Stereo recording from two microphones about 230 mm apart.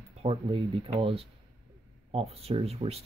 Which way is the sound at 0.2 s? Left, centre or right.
Right.